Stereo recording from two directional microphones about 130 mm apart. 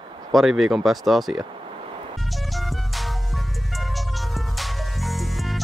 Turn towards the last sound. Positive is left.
turn(degrees=0)  # may be behind; listen again after turning